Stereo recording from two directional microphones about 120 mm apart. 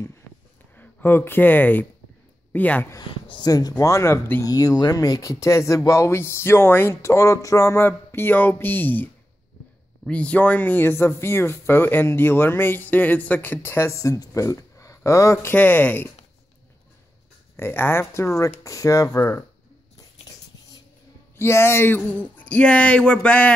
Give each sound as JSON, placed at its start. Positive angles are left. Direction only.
{"t": 0.7, "sound": "speech", "side_deg": 15}
{"t": 3.1, "sound": "speech", "side_deg": 45}
{"t": 3.4, "sound": "speech", "side_deg": 30}
{"t": 17.6, "sound": "speech", "side_deg": 15}
{"t": 21.4, "sound": "speech", "side_deg": 20}